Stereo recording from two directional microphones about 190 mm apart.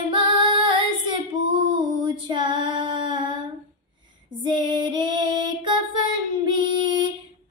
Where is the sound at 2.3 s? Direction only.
25° right (ahead or behind).